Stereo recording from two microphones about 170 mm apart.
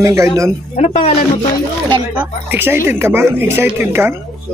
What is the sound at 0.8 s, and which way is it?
Speech, 40° left (ahead or behind).